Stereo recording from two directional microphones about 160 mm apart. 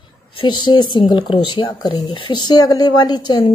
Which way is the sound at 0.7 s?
30° left (ahead or behind).